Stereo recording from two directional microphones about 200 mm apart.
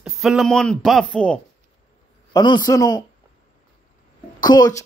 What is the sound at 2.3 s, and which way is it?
Speech, 20° left (ahead or behind).